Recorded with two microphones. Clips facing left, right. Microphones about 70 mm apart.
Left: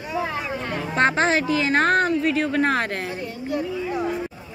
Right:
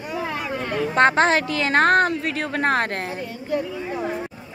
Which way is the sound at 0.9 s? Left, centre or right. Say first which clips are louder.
Right 2 dB; right.